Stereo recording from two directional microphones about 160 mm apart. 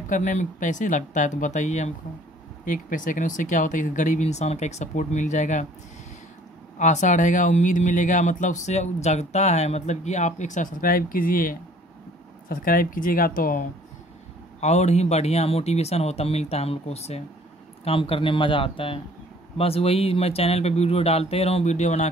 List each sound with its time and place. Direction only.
0.1 s speech: 50° left (ahead or behind)
6.8 s speech: 50° left (ahead or behind)
14.6 s speech: 45° left (ahead or behind)